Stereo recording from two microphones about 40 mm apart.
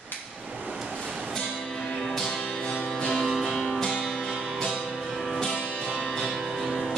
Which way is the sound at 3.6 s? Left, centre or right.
Centre.